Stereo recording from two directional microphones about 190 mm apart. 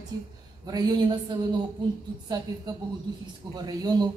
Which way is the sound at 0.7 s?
20° right (ahead or behind).